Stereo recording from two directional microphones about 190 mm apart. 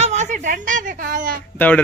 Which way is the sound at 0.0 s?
35° right (ahead or behind).